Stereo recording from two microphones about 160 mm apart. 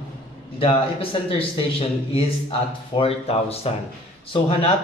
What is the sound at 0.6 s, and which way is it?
A man's voice, 35° left (ahead or behind).